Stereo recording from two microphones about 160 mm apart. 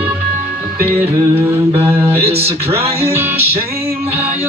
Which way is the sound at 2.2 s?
40° right (ahead or behind).